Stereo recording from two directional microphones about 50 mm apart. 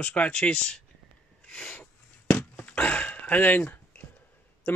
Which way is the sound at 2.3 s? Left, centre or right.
Left.